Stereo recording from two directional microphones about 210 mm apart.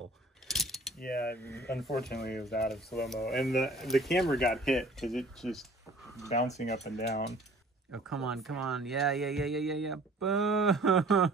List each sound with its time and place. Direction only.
0.5 s keys jangling: centre (ahead or behind)
0.9 s speech: 45° left (ahead or behind)
1.4 s speech: 10° left (ahead or behind)
2.2 s speech: 50° left (ahead or behind)
3.1 s speech: centre (ahead or behind)
6.2 s speech: 30° left (ahead or behind)
7.9 s speech: centre (ahead or behind)